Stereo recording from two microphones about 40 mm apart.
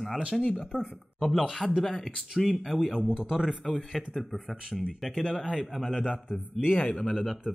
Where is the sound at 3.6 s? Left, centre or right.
Centre.